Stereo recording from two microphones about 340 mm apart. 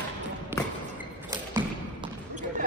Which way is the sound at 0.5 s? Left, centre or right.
Centre.